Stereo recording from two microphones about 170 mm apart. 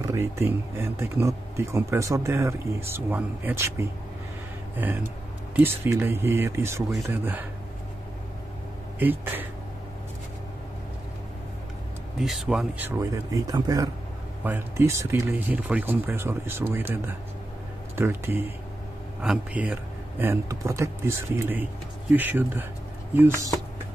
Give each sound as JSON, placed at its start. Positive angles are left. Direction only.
{"t": 0.0, "sound": "speech", "side_deg": -20}
{"t": 9.0, "sound": "speech", "side_deg": -10}
{"t": 12.2, "sound": "speech", "side_deg": 0}